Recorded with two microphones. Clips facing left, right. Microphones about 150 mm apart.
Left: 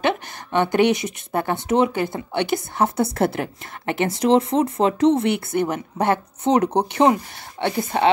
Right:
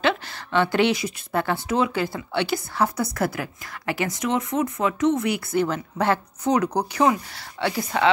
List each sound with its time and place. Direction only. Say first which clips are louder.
0.0 s a woman's voice: left 1 dB; 20° left (ahead or behind)